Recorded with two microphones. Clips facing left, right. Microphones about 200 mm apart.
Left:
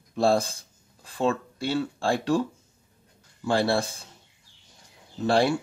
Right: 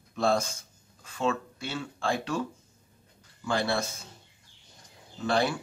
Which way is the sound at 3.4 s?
30° left (ahead or behind).